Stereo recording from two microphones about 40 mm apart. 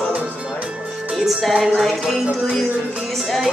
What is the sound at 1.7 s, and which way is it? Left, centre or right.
Speech, centre.